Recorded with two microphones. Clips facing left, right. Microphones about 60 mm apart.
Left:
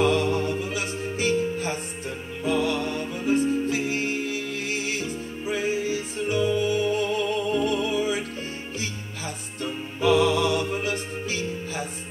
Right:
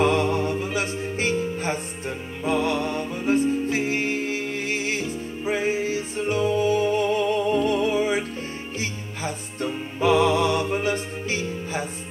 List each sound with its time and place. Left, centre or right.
0.0 s music: right
0.5 s music: centre
0.7 s music: right; by 3.3 s centre
3.3 s music: right
8.0 s music: right
9.9 s music: right